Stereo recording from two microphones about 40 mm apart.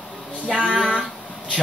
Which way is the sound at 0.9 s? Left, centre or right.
Centre.